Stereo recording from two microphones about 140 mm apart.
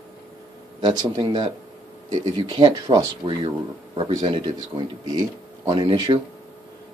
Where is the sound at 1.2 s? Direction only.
30° right (ahead or behind).